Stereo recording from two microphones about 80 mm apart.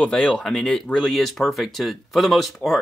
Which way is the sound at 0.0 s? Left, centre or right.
Centre.